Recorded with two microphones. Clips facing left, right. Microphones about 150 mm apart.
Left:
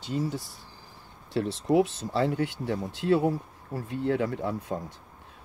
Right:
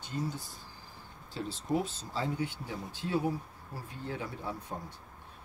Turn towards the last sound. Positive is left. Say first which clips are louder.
# left 9 dB
turn(degrees=90)